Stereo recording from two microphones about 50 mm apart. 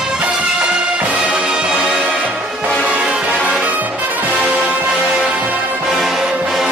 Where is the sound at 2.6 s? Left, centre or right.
Centre.